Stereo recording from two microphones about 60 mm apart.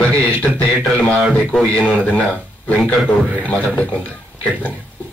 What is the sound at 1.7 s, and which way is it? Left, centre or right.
A man's voice, left.